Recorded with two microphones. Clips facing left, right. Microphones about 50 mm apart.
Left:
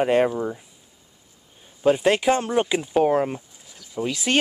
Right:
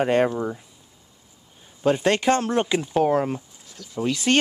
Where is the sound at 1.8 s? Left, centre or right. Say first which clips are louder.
Left 1 dB; centre.